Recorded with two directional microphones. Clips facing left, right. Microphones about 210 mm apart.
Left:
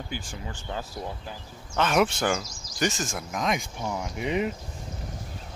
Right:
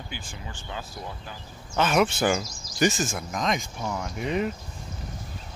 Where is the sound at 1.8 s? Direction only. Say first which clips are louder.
Right 1 dB; centre (ahead or behind).